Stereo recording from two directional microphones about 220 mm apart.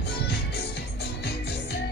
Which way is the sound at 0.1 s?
50° left (ahead or behind).